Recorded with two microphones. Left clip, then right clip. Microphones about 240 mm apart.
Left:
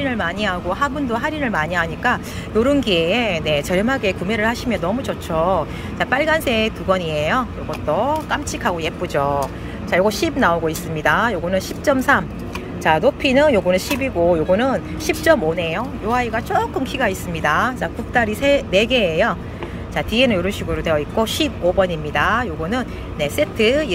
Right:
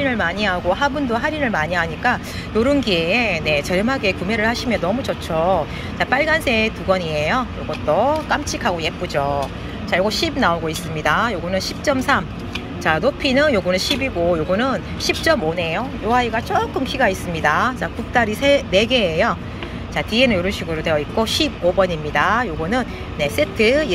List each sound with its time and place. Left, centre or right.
0.0 s speech: centre